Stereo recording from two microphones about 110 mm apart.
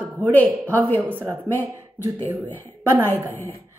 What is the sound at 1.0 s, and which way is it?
Speech, 15° right (ahead or behind).